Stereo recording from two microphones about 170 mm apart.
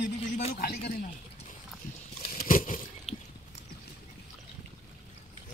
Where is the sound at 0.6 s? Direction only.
60° left (ahead or behind).